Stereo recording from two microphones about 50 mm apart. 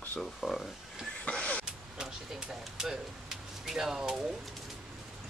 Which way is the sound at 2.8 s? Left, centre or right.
Centre.